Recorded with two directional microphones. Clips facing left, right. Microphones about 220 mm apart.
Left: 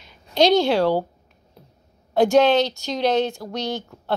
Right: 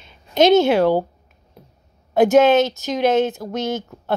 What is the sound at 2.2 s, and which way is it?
A woman's voice, 20° right (ahead or behind).